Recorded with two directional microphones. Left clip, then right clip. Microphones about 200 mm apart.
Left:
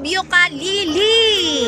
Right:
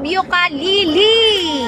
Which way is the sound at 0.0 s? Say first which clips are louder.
Even; 5° right (ahead or behind).